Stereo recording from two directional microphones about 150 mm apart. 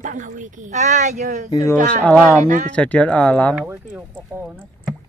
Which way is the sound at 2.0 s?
5° left (ahead or behind).